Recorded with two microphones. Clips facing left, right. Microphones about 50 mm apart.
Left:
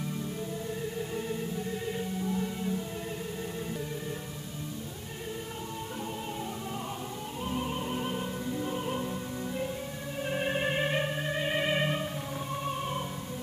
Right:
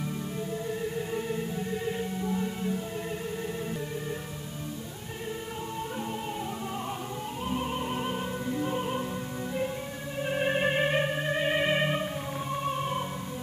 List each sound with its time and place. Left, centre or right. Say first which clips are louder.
0.9 s music: right 3 dB; centre
7.4 s music: right 2 dB; centre
10.2 s music: right 3 dB; centre